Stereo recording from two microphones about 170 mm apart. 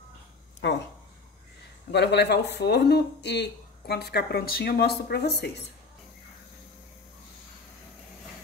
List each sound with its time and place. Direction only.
0.6 s speech: 90° left
1.9 s speech: 80° left